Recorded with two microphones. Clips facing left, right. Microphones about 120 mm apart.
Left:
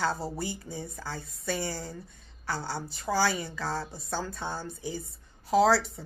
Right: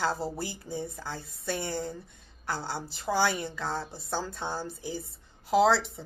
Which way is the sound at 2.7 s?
25° right (ahead or behind).